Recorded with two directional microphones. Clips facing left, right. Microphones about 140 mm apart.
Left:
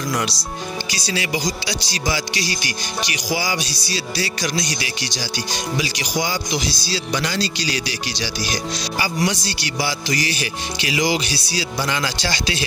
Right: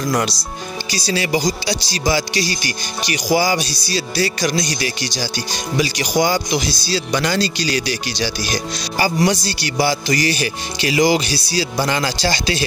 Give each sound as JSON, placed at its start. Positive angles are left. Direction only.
{"t": 0.8, "sound": "speech", "side_deg": -35}